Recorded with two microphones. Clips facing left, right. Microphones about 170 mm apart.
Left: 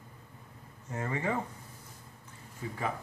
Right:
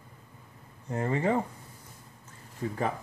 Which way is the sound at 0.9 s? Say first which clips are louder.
Right 6 dB; 30° right (ahead or behind).